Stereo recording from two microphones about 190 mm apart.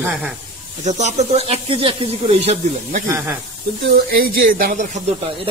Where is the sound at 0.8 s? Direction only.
40° right (ahead or behind).